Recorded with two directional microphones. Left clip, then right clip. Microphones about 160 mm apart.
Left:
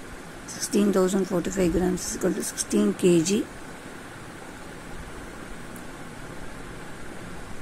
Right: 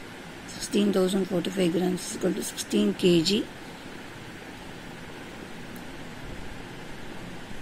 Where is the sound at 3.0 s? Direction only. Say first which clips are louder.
Left 1 dB; 50° left (ahead or behind).